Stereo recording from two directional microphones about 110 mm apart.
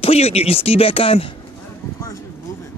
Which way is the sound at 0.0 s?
70° left (ahead or behind).